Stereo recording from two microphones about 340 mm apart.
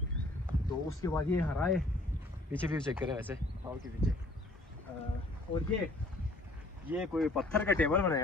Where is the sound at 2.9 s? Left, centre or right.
Centre.